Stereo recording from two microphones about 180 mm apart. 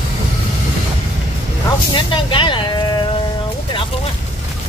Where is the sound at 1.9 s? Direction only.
30° left (ahead or behind).